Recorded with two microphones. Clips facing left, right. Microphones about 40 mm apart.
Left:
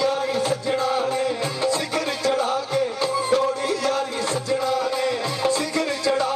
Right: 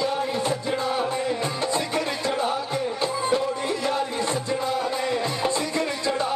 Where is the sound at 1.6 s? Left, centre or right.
Centre.